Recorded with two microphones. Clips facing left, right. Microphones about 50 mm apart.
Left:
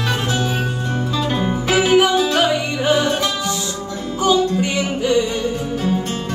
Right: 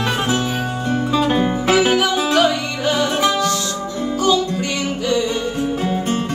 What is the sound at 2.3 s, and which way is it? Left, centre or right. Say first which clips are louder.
Music: right 1 dB; centre.